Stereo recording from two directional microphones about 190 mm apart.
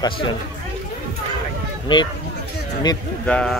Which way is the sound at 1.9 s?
25° left (ahead or behind).